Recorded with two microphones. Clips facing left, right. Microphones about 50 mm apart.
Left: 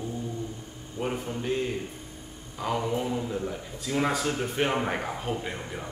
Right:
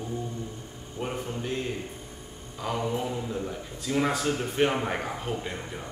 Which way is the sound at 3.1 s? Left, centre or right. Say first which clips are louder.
Left 2 dB; centre.